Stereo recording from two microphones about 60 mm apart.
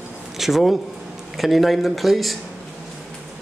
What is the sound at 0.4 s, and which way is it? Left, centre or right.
A woman's voice, centre.